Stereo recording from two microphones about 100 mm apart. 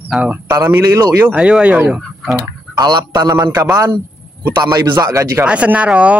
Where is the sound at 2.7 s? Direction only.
45° right (ahead or behind).